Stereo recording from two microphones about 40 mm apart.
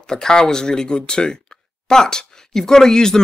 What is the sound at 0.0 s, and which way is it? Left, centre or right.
Speech, centre.